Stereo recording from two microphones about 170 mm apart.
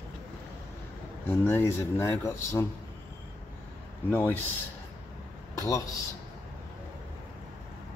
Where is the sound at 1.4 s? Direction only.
15° left (ahead or behind).